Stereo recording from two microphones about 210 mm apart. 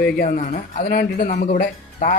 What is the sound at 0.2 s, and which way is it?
Speech, 35° left (ahead or behind).